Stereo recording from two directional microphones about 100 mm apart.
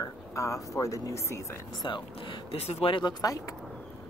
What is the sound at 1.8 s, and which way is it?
Speech, 55° left (ahead or behind).